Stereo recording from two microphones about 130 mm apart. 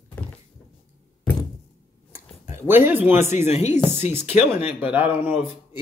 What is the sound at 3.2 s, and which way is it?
Speech, 60° left (ahead or behind).